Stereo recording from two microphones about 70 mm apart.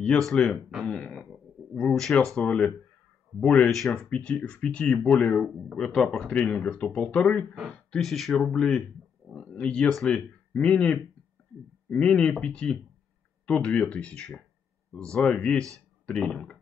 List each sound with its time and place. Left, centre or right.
0.3 s speech: centre
0.8 s throat clearing: centre
1.8 s speech: centre
6.3 s speech: centre